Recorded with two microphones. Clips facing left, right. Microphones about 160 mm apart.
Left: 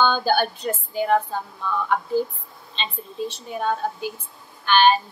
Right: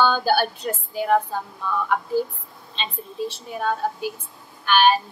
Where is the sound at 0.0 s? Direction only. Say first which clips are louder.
Even; 5° right (ahead or behind).